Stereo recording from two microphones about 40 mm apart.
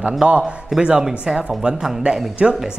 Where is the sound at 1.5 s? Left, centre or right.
Centre.